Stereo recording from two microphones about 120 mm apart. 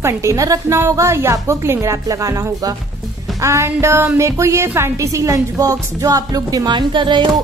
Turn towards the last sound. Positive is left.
turn(degrees=-40)  # may be behind; listen again after turning